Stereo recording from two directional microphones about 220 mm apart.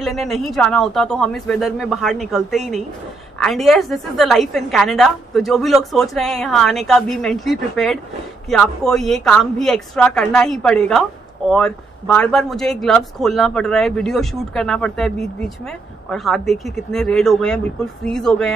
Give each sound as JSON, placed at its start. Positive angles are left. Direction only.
{"t": 0.0, "sound": "speech", "side_deg": 0}